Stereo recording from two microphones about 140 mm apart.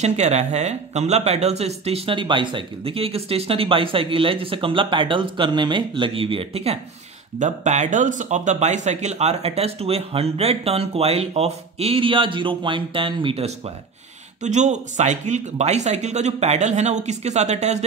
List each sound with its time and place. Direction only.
0.0 s speech: 55° right (ahead or behind)
7.3 s speech: 60° right (ahead or behind); by 13.5 s 40° right (ahead or behind)
14.4 s speech: 55° right (ahead or behind)